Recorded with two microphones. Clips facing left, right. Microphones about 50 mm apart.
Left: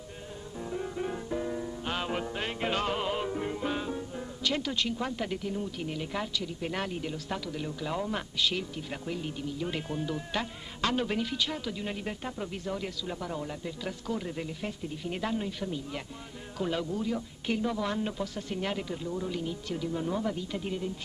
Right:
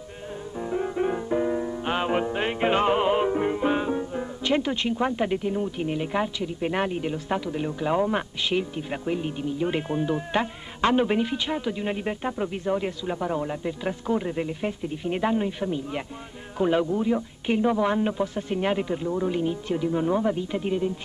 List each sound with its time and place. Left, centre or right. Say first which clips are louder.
0.6 s music: right 8 dB; right
16.5 s speech: right 9 dB; right